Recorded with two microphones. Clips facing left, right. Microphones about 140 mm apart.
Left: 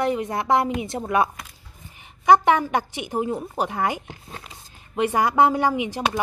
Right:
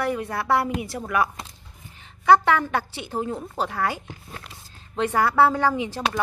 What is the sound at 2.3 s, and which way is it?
A woman's voice, 15° left (ahead or behind).